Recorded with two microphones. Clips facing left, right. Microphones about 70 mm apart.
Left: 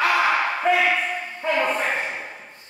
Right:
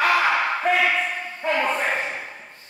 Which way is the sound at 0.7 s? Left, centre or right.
Centre.